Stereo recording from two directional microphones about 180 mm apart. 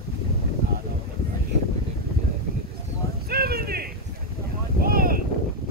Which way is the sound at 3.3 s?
60° right (ahead or behind).